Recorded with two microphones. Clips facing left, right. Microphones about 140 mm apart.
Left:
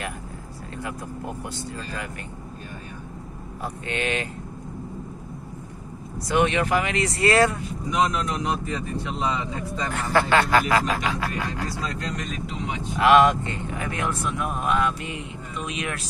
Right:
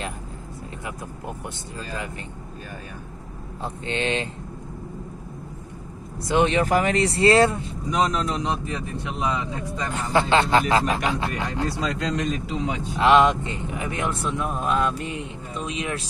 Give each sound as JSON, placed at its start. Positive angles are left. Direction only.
{"t": 3.6, "sound": "speech", "side_deg": -25}
{"t": 6.2, "sound": "speech", "side_deg": -30}
{"t": 11.8, "sound": "speech", "side_deg": -90}
{"t": 13.0, "sound": "speech", "side_deg": -25}